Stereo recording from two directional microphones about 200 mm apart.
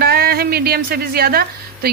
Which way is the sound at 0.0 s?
50° right (ahead or behind).